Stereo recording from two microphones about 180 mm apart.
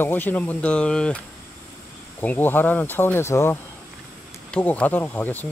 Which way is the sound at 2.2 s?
10° left (ahead or behind).